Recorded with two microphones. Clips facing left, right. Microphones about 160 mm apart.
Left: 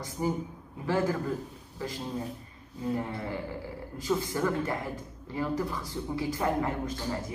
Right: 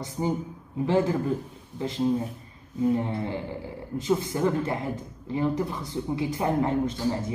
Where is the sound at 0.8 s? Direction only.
25° right (ahead or behind).